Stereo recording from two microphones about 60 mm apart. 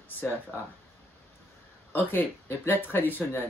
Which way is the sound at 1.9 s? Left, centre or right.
Left.